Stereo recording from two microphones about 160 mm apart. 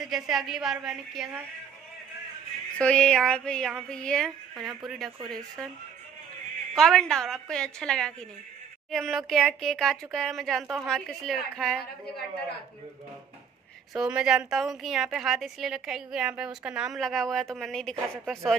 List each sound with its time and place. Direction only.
0.0 s a woman's voice: centre (ahead or behind)
2.8 s a woman's voice: 5° left (ahead or behind)
6.7 s a woman's voice: 5° left (ahead or behind)
11.8 s a woman's voice: 90° left
13.9 s a woman's voice: 5° right (ahead or behind)